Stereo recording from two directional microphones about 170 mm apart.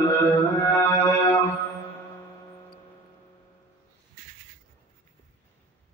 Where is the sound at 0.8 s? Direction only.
15° left (ahead or behind).